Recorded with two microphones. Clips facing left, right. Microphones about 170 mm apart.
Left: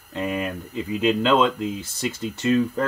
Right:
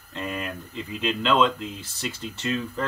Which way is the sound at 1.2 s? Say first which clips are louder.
Right 1 dB; 50° left (ahead or behind).